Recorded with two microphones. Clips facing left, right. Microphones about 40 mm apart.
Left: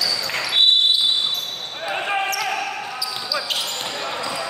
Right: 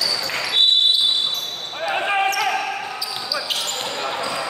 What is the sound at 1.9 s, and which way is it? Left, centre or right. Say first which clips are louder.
Basketball bounce: right 2 dB; centre.